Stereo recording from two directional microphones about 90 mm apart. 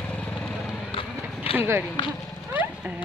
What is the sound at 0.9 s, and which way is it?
Run, 90° left.